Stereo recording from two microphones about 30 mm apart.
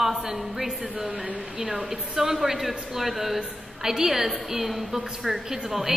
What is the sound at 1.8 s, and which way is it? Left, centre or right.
A woman's voice, centre.